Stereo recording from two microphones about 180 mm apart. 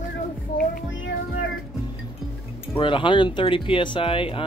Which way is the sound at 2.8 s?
25° left (ahead or behind).